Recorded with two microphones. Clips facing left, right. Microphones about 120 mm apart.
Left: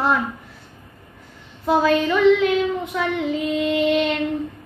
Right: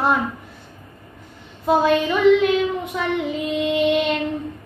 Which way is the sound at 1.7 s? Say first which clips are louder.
Even; 15° right (ahead or behind).